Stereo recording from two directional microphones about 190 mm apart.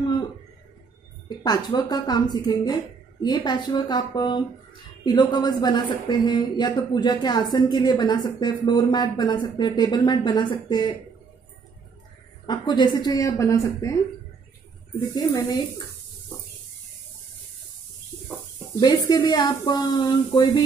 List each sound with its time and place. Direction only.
1.4 s speech: 20° left (ahead or behind)
12.4 s speech: 25° left (ahead or behind)
15.1 s speech: 20° left (ahead or behind)
18.8 s speech: 20° left (ahead or behind)